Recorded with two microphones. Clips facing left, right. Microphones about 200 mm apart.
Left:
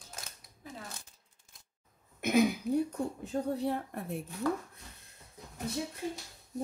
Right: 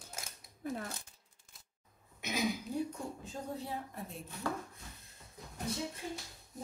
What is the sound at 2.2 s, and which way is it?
Speech, 55° left (ahead or behind).